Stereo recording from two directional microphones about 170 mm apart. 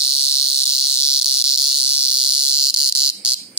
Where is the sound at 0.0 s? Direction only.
30° right (ahead or behind).